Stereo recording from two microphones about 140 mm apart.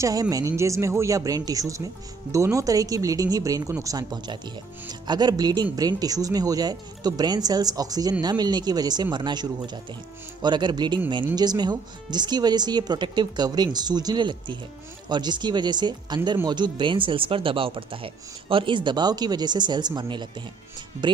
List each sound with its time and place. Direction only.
0.0 s speech: 25° right (ahead or behind)